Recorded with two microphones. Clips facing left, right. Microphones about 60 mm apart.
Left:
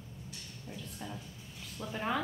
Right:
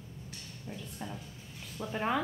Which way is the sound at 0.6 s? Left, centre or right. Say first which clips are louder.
Right 2 dB; centre.